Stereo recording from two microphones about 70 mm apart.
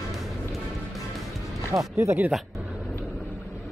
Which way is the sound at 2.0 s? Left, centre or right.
Right.